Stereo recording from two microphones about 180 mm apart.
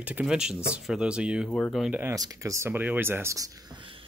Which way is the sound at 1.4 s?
5° left (ahead or behind).